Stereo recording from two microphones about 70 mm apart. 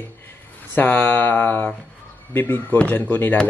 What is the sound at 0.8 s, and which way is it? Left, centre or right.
Speech, left.